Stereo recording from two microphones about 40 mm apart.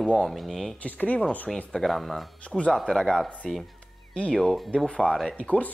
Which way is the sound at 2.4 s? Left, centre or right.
Left.